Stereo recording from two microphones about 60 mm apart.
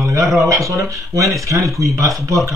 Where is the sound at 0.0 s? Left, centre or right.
Right.